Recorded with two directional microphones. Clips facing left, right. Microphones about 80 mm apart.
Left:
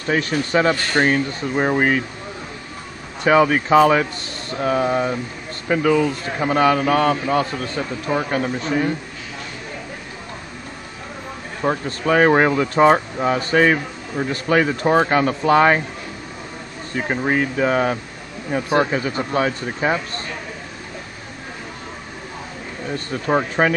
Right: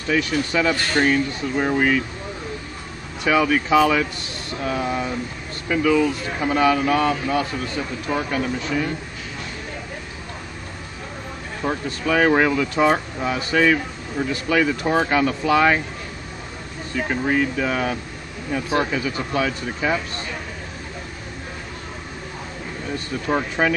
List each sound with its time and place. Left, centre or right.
0.1 s speech: left
3.3 s a man's voice: left
11.6 s speech: left
16.9 s speech: left
23.1 s a man's voice: left